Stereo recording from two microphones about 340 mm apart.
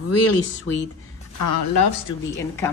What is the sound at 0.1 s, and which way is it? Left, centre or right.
Speech, left.